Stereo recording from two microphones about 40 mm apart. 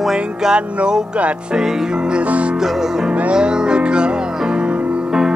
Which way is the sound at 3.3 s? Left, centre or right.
Right.